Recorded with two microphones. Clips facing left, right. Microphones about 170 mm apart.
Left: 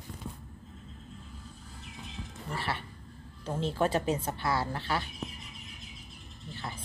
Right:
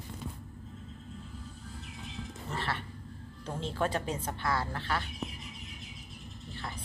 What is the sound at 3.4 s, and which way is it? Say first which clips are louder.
A woman's voice: left 3 dB; 10° left (ahead or behind).